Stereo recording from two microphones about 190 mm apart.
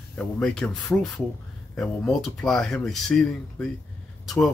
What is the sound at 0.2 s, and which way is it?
Speech, 5° left (ahead or behind).